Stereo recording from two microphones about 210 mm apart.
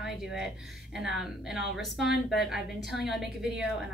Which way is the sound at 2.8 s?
Centre (ahead or behind).